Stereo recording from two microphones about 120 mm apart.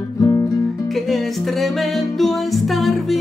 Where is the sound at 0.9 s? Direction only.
Centre (ahead or behind).